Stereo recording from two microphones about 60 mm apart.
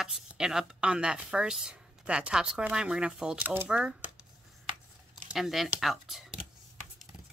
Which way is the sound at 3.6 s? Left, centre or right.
Centre.